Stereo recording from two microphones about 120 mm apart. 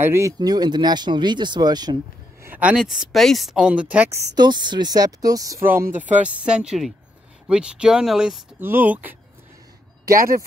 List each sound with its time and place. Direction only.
0.0 s speech: 20° right (ahead or behind)
0.4 s speech: 35° right (ahead or behind)
2.4 s speech: 15° right (ahead or behind)
4.4 s speech: 40° right (ahead or behind)
5.6 s speech: 20° right (ahead or behind); by 8.4 s 5° right (ahead or behind)
8.5 s speech: 15° right (ahead or behind)